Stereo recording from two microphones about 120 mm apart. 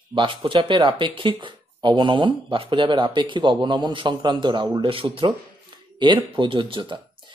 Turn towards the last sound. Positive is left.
turn(degrees=-45)  # may be behind; listen again after turning